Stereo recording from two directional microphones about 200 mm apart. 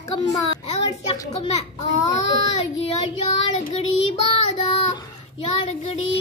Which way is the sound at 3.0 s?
30° left (ahead or behind).